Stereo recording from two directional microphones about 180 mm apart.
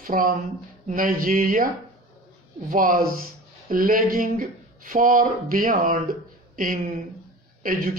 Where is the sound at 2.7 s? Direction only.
55° right (ahead or behind).